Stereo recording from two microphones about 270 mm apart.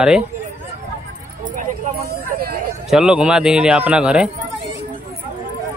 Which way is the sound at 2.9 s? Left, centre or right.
Centre.